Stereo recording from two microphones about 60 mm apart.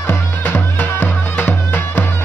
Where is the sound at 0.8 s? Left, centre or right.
Left.